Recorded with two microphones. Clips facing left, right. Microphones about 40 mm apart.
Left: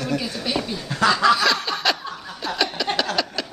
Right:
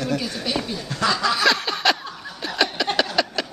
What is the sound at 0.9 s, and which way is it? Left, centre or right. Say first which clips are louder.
Snicker: left 5 dB; centre.